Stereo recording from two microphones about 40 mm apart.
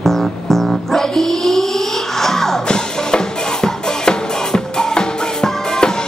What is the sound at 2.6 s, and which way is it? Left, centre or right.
Music, centre.